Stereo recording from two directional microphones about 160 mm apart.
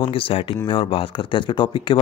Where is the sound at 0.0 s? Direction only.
35° left (ahead or behind).